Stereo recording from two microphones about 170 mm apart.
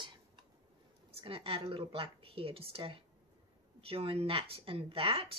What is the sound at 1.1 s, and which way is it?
Speech, 35° right (ahead or behind).